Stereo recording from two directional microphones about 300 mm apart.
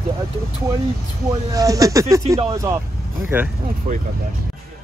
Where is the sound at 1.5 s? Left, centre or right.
Centre.